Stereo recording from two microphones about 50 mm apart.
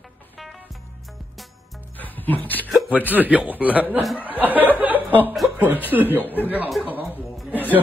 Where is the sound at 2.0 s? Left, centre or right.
Left.